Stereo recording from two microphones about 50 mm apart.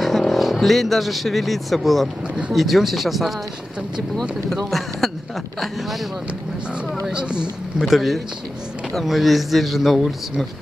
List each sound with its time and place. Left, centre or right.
0.2 s speech: centre
2.2 s speech: right
2.5 s speech: centre
4.6 s speech: centre
7.1 s speech: centre
7.8 s speech: centre